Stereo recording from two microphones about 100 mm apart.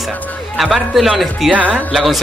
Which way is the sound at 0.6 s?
Centre (ahead or behind).